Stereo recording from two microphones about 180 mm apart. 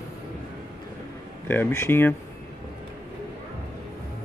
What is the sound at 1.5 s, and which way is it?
Speech, 15° left (ahead or behind).